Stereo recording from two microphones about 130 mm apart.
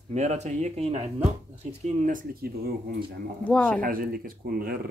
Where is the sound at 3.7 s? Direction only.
90° right.